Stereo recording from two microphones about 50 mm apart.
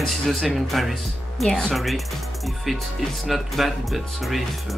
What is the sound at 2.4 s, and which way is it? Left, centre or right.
Music, centre.